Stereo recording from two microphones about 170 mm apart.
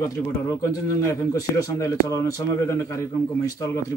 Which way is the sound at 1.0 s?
20° left (ahead or behind).